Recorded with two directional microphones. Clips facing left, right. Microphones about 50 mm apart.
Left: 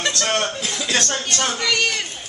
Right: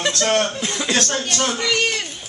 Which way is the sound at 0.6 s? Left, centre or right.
Right.